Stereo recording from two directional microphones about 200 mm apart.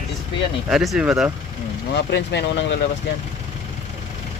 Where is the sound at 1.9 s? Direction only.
60° left (ahead or behind).